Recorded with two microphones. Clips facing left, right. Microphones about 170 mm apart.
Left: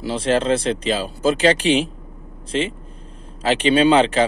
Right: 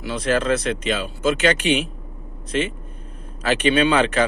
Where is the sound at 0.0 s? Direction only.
30° left (ahead or behind).